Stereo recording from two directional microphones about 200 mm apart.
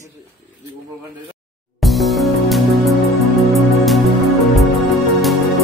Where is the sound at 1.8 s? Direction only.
Centre (ahead or behind).